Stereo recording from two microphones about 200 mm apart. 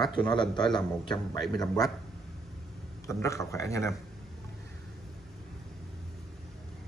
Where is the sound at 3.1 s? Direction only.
15° left (ahead or behind).